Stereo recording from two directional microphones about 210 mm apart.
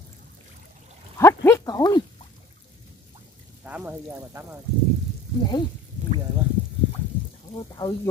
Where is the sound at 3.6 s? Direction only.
10° right (ahead or behind).